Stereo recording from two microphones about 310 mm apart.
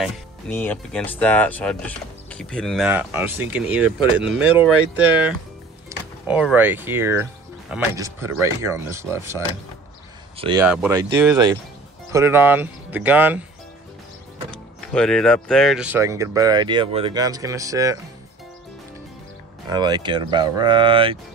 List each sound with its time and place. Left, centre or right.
0.0 s speech: centre
5.9 s speech: centre
10.6 s speech: centre
14.9 s speech: centre
19.7 s speech: centre